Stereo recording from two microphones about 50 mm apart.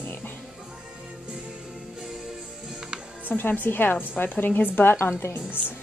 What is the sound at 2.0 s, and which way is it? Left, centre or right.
Music, centre.